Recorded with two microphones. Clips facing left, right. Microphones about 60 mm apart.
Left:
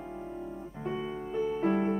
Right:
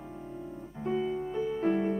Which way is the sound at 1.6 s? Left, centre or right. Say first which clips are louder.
Right 1 dB; left.